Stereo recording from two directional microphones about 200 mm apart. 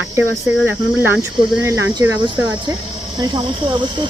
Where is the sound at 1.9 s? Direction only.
15° right (ahead or behind).